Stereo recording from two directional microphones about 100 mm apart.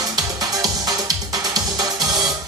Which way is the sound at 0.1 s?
40° right (ahead or behind).